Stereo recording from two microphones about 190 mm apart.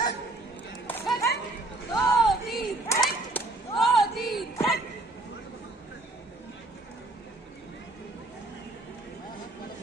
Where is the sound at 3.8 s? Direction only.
Centre (ahead or behind).